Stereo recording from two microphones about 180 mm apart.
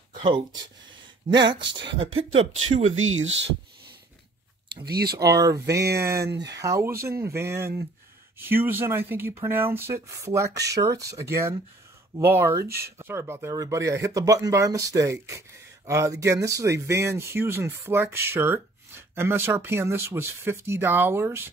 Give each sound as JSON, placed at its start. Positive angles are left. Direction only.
{"t": 1.3, "sound": "speech", "side_deg": -25}
{"t": 3.0, "sound": "speech", "side_deg": -90}
{"t": 4.8, "sound": "speech", "side_deg": -60}
{"t": 5.1, "sound": "speech", "side_deg": -20}
{"t": 5.7, "sound": "speech", "side_deg": -65}
{"t": 5.9, "sound": "speech", "side_deg": -15}
{"t": 6.2, "sound": "speech", "side_deg": -75}
{"t": 6.6, "sound": "speech", "side_deg": -15}